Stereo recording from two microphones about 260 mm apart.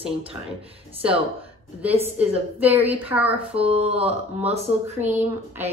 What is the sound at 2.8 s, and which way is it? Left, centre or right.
Speech, centre.